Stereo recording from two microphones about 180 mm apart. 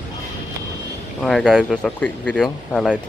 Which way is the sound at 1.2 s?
Centre (ahead or behind).